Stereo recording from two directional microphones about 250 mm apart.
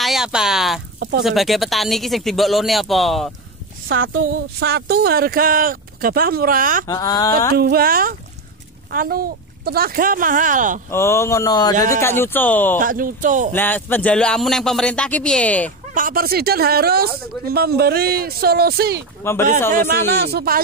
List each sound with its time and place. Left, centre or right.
0.0 s speech: centre
3.9 s speech: right
6.9 s speech: centre
7.5 s speech: right
10.9 s speech: centre
12.7 s speech: right
13.5 s speech: centre
15.9 s speech: right